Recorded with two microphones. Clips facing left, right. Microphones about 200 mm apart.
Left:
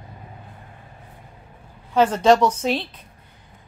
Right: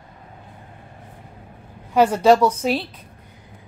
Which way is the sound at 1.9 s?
10° right (ahead or behind).